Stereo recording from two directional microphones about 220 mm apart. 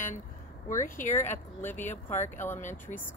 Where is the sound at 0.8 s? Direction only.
35° left (ahead or behind).